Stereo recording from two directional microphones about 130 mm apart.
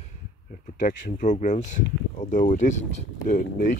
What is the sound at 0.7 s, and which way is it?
Speech, 90° left.